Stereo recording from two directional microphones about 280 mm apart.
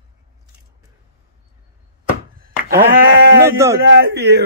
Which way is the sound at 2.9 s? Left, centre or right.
Right.